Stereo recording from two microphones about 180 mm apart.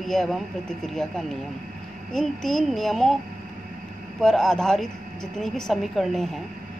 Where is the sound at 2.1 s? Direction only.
5° left (ahead or behind).